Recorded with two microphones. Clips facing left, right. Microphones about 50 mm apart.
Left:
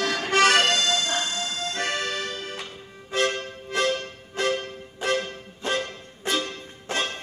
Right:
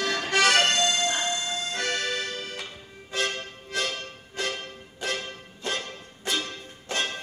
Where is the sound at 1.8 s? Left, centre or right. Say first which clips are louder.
Left 2 dB; left.